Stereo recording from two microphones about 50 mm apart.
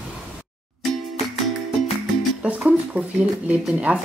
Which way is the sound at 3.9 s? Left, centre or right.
Right.